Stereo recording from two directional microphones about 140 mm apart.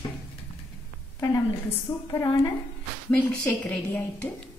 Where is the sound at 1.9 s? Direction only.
25° left (ahead or behind).